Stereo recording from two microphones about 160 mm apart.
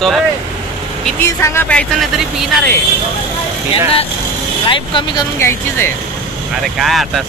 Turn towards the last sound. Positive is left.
turn(degrees=0)  # may be behind; listen again after turning